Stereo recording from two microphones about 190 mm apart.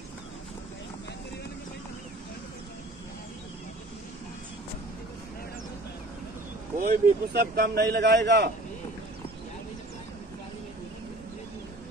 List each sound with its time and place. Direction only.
6.8 s a man's voice: 50° right (ahead or behind)